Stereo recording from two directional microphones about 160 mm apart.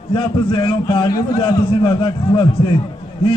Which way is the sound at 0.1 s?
35° left (ahead or behind).